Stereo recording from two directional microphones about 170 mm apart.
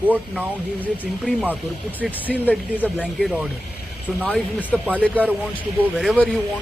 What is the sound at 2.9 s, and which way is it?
Speech, 5° right (ahead or behind).